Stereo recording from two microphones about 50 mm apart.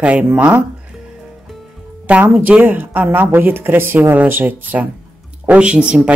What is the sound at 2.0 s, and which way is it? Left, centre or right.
Speech, right.